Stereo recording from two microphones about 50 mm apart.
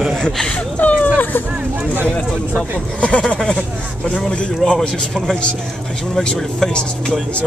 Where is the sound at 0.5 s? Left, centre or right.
Left.